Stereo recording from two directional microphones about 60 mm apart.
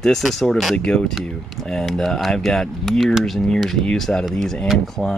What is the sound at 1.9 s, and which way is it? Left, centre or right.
Speech, centre.